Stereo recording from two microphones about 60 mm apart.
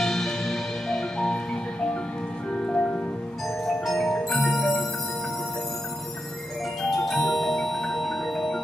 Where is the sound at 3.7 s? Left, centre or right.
Centre.